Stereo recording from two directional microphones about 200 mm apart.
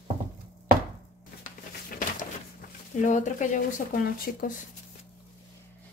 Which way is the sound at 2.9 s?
40° left (ahead or behind).